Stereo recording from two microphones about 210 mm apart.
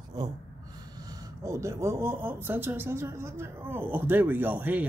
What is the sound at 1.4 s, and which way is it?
A woman's voice, 15° right (ahead or behind).